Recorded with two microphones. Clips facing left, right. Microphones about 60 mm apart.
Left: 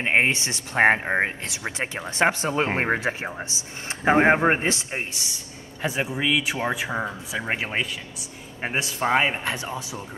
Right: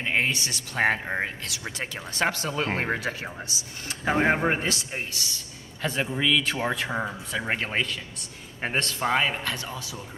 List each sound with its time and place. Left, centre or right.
0.0 s speech: left; by 9.1 s centre
9.1 s speech: left